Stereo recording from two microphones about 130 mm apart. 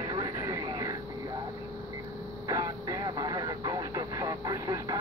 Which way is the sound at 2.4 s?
25° right (ahead or behind).